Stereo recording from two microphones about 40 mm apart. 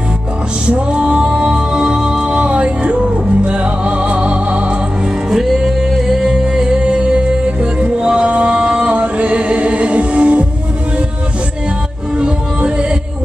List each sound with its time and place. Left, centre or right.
0.7 s music: right
1.6 s music: centre; by 4.7 s right
5.3 s music: centre; by 10.4 s right
12.5 s music: right